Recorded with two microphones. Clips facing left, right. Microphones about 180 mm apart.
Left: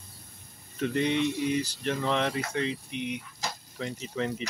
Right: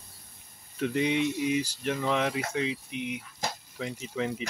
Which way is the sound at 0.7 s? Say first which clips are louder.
Even; 10° right (ahead or behind).